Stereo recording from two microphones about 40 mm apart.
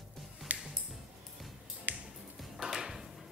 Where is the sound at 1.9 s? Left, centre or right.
Right.